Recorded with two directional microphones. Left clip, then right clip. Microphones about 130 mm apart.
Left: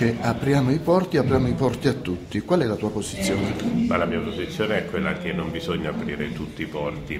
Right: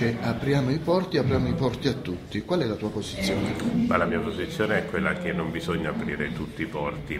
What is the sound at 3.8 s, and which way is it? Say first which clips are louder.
Speech: even; 5° left (ahead or behind).